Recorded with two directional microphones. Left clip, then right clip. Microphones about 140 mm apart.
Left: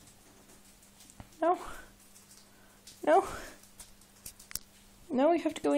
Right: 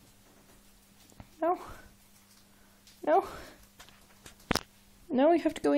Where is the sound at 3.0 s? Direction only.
15° left (ahead or behind).